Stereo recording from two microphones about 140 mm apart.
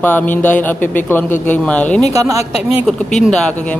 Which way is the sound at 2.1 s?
25° right (ahead or behind).